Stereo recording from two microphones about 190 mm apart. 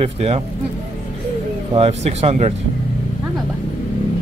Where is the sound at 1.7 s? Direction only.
30° right (ahead or behind).